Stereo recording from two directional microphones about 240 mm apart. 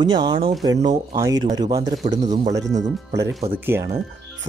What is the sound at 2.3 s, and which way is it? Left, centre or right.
Speech, right.